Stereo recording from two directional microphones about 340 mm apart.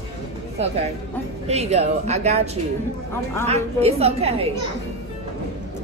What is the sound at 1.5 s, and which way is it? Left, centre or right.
Speech, centre.